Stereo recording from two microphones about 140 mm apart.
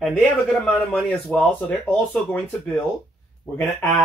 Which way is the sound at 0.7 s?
5° left (ahead or behind).